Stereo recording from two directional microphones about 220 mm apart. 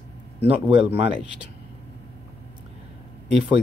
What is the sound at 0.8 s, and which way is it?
Speech, 25° right (ahead or behind).